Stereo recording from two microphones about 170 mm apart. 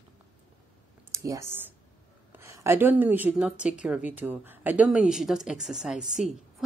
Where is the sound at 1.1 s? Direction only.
20° right (ahead or behind).